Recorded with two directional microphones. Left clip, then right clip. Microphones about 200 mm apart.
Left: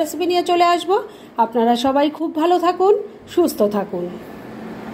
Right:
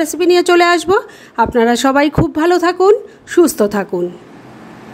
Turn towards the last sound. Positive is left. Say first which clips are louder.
# right 5 dB
turn(degrees=-40)  # may be behind; listen again after turning